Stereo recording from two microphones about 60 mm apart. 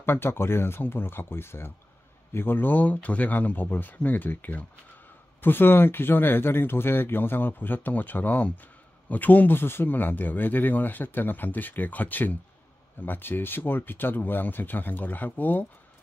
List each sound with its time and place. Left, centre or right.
0.0 s speech: left